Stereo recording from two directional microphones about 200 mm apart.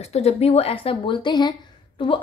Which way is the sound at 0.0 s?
35° left (ahead or behind).